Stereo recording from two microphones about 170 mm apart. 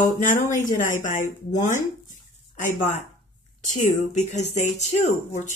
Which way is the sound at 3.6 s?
45° left (ahead or behind).